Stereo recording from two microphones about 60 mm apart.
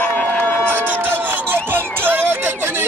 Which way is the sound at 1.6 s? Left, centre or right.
Right.